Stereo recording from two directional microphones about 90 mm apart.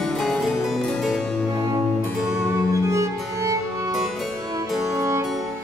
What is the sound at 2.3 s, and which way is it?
Music, 35° right (ahead or behind).